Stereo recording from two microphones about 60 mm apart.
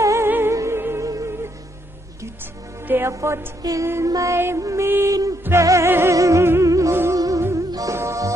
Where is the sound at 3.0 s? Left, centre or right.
Right.